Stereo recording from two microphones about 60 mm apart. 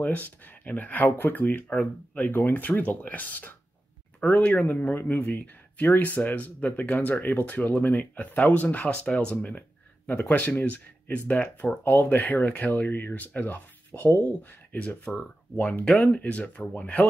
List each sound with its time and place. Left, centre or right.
0.0 s a man's voice: left
15.5 s speech: left